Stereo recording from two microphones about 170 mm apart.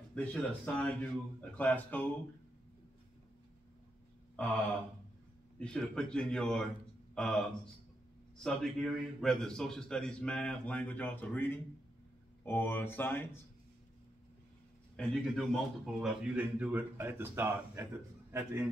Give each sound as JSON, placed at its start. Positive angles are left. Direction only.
{"t": 0.1, "sound": "speech", "side_deg": 10}
{"t": 5.6, "sound": "a man's voice", "side_deg": 5}
{"t": 15.0, "sound": "a man's voice", "side_deg": 0}